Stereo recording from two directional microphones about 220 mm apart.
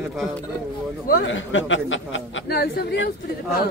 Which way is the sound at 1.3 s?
60° left (ahead or behind).